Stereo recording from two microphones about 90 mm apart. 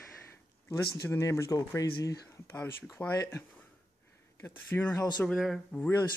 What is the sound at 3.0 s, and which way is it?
Speech, 15° left (ahead or behind).